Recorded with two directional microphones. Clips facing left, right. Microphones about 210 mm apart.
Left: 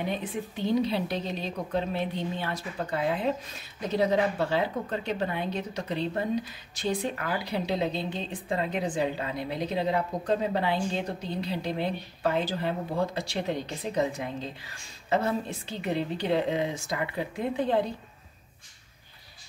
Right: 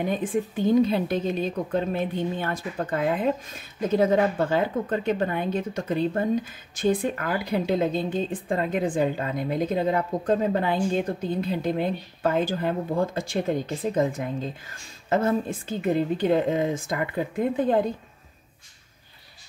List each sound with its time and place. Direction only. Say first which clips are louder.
0.0 s a woman's voice: right 6 dB; 50° right (ahead or behind)